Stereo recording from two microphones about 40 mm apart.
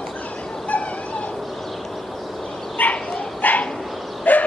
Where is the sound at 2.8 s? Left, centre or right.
Left.